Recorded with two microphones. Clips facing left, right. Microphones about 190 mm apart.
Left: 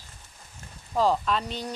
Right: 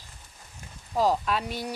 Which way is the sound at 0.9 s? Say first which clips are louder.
Left 1 dB; 10° right (ahead or behind).